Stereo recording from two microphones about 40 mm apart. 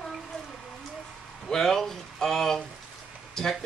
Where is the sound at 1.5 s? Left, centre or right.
Centre.